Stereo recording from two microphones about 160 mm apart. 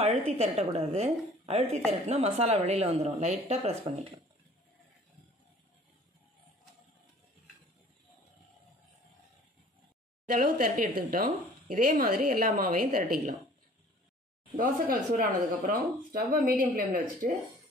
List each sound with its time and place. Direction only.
0.3 s a woman's voice: 40° right (ahead or behind)
10.2 s speech: 60° right (ahead or behind)
14.6 s speech: 60° right (ahead or behind)